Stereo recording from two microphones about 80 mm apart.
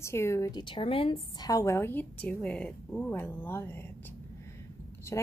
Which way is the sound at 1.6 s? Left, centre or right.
Left.